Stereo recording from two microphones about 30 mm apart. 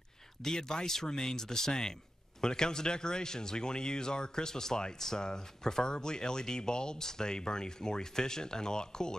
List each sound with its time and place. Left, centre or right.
0.4 s speech: centre